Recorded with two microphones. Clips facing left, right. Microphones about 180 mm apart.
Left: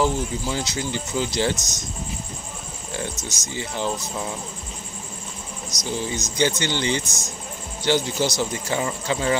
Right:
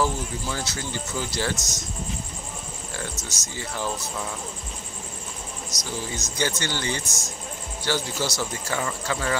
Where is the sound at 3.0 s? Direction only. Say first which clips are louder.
Left 6 dB; 20° left (ahead or behind).